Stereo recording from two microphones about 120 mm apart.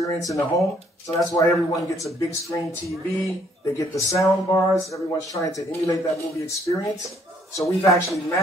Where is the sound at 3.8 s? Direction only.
25° left (ahead or behind).